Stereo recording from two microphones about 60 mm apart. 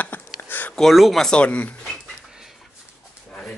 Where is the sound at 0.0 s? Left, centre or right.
Left.